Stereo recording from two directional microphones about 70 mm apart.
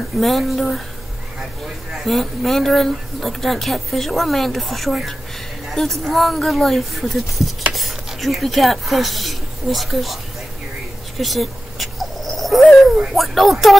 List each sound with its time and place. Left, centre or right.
0.2 s speech: centre
1.9 s speech: centre
11.1 s a sound: centre
13.1 s speech: centre